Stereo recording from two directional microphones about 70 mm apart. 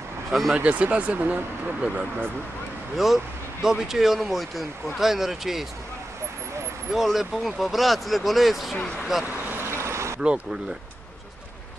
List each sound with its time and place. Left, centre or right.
0.3 s speech: centre
0.6 s speech: right
3.0 s speech: centre
6.9 s speech: centre
8.7 s speech: centre
9.6 s vehicle: right